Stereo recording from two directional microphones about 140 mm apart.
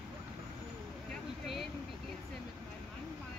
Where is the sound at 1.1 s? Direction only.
Centre (ahead or behind).